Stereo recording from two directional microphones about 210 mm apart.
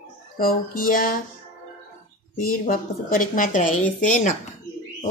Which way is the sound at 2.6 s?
40° left (ahead or behind).